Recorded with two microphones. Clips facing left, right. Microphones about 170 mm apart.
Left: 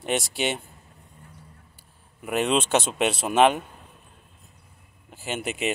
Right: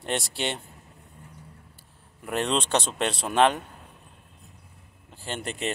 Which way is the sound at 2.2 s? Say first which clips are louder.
Left 3 dB; 5° left (ahead or behind).